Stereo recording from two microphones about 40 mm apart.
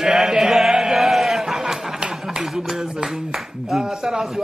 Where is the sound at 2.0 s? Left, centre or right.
Centre.